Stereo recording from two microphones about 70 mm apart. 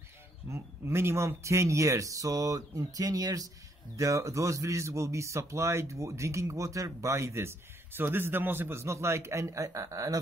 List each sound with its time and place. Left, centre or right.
0.5 s a man's voice: right